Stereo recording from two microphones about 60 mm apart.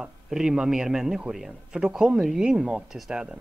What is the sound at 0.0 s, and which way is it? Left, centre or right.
Speech, centre.